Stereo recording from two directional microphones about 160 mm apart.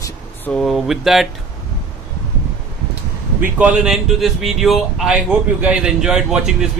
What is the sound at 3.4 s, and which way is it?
Speech, 10° right (ahead or behind).